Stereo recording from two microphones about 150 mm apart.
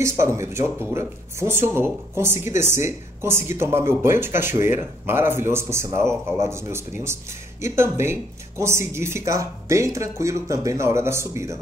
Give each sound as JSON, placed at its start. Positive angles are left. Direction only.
{"t": 0.0, "sound": "speech", "side_deg": -20}